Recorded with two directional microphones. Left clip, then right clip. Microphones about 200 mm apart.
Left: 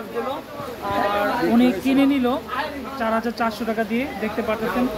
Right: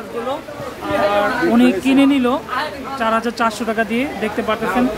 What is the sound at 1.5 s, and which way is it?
Speech, 10° right (ahead or behind).